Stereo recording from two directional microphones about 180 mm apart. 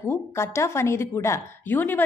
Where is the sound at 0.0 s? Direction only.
15° left (ahead or behind).